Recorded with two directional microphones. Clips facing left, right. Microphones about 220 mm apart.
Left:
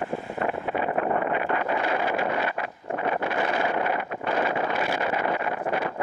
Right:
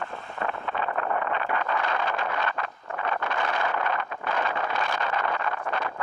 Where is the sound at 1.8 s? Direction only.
10° left (ahead or behind).